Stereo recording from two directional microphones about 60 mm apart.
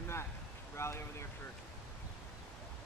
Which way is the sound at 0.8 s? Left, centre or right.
Left.